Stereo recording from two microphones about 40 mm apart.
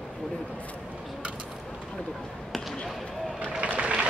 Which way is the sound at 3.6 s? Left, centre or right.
Right.